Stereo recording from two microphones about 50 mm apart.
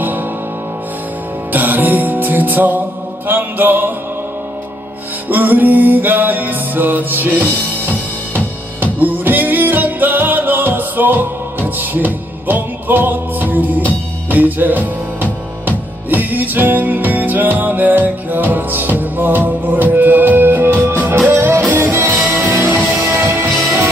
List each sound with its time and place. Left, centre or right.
1.5 s music: right
5.3 s music: right
9.0 s music: right